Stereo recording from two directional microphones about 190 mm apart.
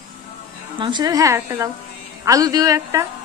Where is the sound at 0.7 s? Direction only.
25° right (ahead or behind).